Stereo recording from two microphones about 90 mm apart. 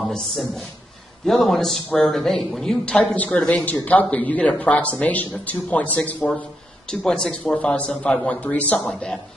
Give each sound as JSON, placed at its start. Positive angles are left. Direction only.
{"t": 0.0, "sound": "a man's voice", "side_deg": 5}
{"t": 6.9, "sound": "speech", "side_deg": 5}